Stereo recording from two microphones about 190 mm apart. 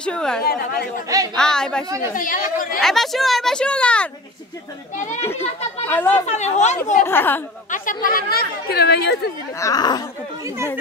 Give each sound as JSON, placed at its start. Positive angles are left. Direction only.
{"t": 0.0, "sound": "speech", "side_deg": 5}
{"t": 0.4, "sound": "speech", "side_deg": 55}
{"t": 1.0, "sound": "a woman's voice", "side_deg": -20}
{"t": 1.3, "sound": "speech", "side_deg": 5}
{"t": 1.9, "sound": "a woman's voice", "side_deg": -15}
{"t": 2.1, "sound": "a woman's voice", "side_deg": 45}
{"t": 2.8, "sound": "speech", "side_deg": 0}
{"t": 4.9, "sound": "speech", "side_deg": 40}
{"t": 5.9, "sound": "a woman's voice", "side_deg": 10}
{"t": 6.2, "sound": "speech", "side_deg": 35}
{"t": 7.1, "sound": "a woman's voice", "side_deg": 10}
{"t": 7.7, "sound": "a woman's voice", "side_deg": 45}
{"t": 9.6, "sound": "speech", "side_deg": 20}